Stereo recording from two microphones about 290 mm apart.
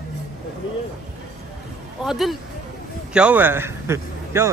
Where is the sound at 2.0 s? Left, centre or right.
Centre.